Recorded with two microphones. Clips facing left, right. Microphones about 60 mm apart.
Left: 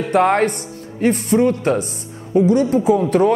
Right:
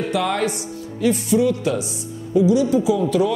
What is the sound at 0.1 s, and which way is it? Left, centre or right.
Speech, left.